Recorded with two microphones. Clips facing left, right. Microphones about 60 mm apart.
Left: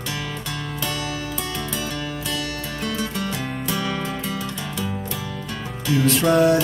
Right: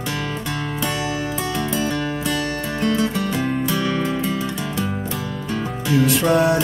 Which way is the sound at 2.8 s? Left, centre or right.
Right.